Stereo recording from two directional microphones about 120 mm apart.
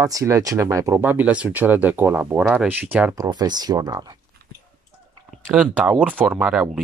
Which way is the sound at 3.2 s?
35° right (ahead or behind).